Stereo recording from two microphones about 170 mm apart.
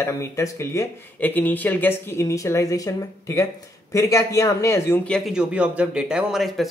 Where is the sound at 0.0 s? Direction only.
15° left (ahead or behind).